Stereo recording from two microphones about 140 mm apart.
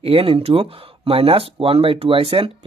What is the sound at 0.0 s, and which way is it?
Speech, 40° right (ahead or behind).